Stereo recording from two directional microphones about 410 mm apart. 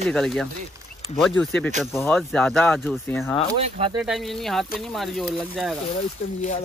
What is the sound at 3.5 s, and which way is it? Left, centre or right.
Speech, centre.